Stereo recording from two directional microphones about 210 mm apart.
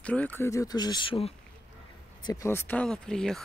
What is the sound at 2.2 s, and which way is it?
Speech, 15° left (ahead or behind).